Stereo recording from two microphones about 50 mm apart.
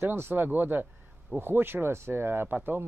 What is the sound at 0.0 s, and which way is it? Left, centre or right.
Speech, right.